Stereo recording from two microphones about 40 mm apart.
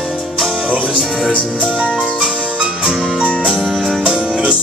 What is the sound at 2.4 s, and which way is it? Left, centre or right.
Music, right.